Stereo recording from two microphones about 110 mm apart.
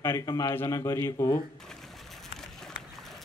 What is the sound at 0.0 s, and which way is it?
A man's voice, 25° left (ahead or behind).